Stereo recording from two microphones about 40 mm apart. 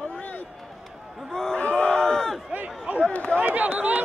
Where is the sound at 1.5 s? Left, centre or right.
Left.